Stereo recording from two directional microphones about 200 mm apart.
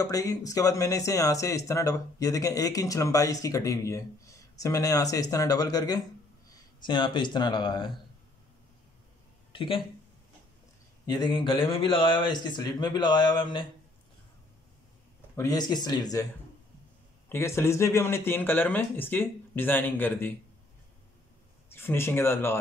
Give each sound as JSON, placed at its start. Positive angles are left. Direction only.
{"t": 0.0, "sound": "speech", "side_deg": 15}
{"t": 9.5, "sound": "speech", "side_deg": 25}
{"t": 11.1, "sound": "speech", "side_deg": 20}
{"t": 15.3, "sound": "speech", "side_deg": 20}
{"t": 17.3, "sound": "speech", "side_deg": 15}
{"t": 21.6, "sound": "speech", "side_deg": 10}